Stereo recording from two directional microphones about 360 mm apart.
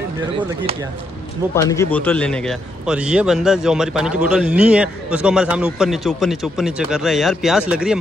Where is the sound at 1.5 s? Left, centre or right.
Centre.